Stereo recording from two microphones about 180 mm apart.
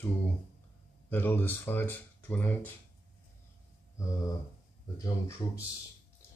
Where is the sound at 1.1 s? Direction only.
10° left (ahead or behind).